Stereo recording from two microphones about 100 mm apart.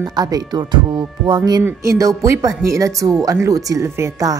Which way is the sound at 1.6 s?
30° right (ahead or behind).